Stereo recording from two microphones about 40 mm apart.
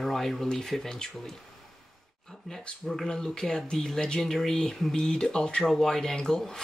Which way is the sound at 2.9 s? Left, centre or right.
Centre.